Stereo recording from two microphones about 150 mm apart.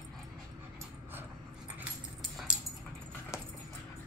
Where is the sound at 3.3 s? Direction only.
20° left (ahead or behind).